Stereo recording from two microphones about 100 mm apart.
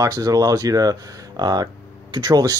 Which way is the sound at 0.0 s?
35° right (ahead or behind).